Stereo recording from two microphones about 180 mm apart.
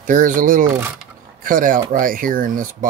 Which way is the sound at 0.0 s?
45° right (ahead or behind).